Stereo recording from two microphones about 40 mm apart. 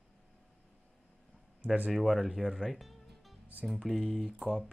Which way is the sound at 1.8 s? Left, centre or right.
Centre.